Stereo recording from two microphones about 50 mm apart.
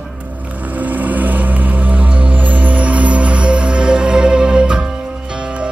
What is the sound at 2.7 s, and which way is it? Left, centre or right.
Music, right.